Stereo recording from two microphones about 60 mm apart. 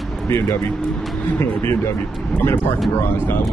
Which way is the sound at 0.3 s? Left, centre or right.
Left.